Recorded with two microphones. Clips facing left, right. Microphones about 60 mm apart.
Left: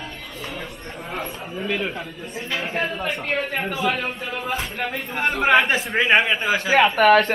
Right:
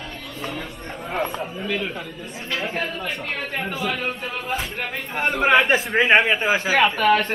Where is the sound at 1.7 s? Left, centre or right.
Centre.